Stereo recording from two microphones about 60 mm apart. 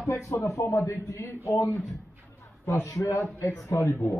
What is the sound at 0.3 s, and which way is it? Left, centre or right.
Speech, left.